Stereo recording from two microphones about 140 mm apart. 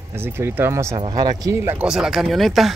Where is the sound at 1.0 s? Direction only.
35° right (ahead or behind).